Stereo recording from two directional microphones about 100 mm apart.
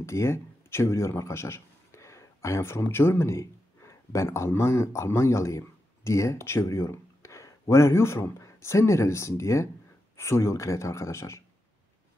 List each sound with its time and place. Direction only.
0.0 s a man's voice: 25° left (ahead or behind)